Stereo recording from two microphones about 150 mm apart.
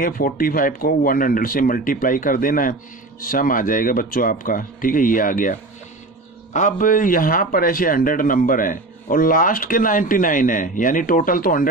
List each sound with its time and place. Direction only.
0.0 s a man's voice: 70° left (ahead or behind)